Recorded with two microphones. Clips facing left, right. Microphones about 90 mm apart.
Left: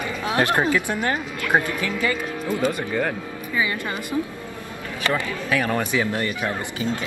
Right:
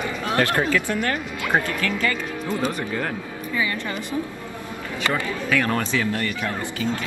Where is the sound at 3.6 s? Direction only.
20° left (ahead or behind).